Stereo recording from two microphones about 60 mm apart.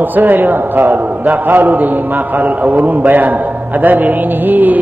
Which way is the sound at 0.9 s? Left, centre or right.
Right.